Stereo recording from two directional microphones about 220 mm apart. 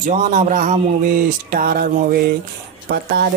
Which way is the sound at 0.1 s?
35° right (ahead or behind).